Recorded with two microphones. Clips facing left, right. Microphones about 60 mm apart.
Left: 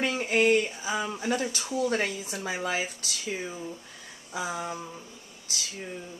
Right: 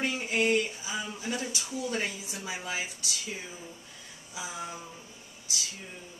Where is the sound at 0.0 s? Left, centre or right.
Left.